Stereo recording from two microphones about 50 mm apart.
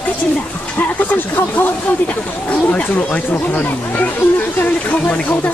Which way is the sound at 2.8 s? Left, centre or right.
Left.